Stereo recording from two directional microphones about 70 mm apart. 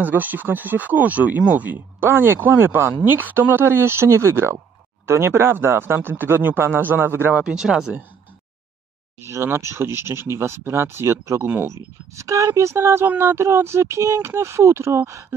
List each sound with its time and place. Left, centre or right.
0.0 s speech: right
2.0 s speech: right
7.5 s speech: centre
9.2 s speech: right
12.2 s speech: right